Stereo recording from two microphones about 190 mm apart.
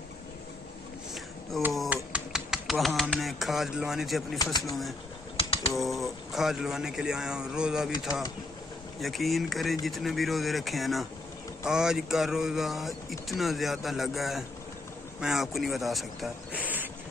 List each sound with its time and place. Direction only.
1.1 s a sound: centre (ahead or behind)
4.6 s speech: centre (ahead or behind)
5.4 s typing: 30° left (ahead or behind)
5.7 s speech: centre (ahead or behind)
9.0 s speech: centre (ahead or behind)